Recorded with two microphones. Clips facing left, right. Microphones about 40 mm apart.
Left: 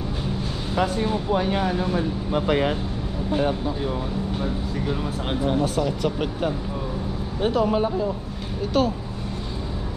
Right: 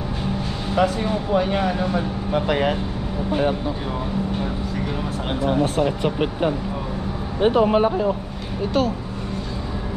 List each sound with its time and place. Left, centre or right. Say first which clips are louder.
3.3 s speech: right 2 dB; centre
5.5 s speech: right 4 dB; right
8.8 s speech: even; centre